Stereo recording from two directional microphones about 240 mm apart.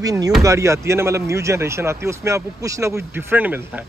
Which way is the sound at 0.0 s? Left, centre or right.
Centre.